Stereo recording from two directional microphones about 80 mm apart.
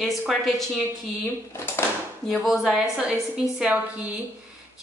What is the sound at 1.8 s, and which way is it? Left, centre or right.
Drawer open or close, left.